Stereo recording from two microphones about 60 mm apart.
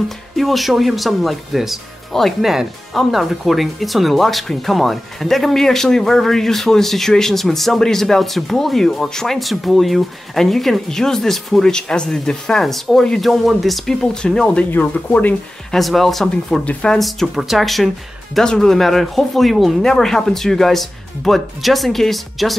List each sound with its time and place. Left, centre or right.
0.4 s speech: centre
14.2 s speech: centre
14.7 s speech: left
15.7 s speech: centre
16.6 s speech: centre
17.0 s speech: centre